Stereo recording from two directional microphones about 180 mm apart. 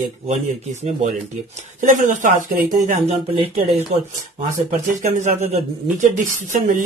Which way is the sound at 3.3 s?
35° right (ahead or behind).